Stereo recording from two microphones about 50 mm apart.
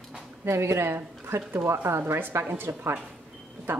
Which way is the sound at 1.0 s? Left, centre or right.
Right.